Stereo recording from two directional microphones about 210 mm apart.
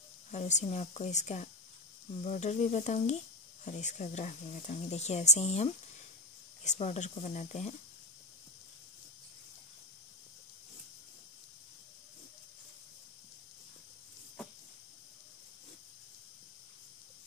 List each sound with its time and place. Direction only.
0.3 s speech: 35° left (ahead or behind)